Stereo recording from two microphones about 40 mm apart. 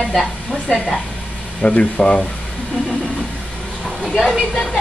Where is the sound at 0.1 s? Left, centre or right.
Centre.